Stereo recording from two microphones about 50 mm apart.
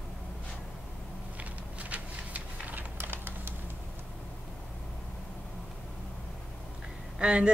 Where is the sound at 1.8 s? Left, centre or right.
Right.